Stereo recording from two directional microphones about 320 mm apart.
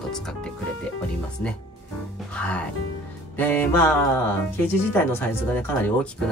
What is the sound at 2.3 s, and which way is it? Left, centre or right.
Speech, centre.